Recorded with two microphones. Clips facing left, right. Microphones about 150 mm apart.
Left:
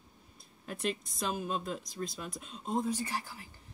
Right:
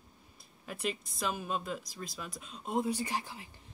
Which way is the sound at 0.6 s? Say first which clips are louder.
Left 1 dB; 5° right (ahead or behind).